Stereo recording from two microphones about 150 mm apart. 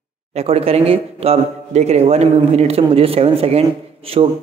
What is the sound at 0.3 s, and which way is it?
A man's voice, 45° right (ahead or behind).